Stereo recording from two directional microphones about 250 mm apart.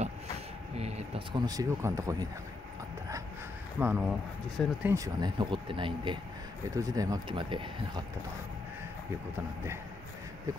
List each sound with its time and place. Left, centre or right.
0.7 s speech: right
3.8 s speech: centre